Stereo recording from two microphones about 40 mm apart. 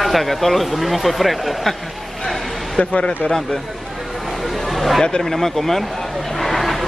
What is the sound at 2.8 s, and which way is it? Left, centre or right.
Speech, left.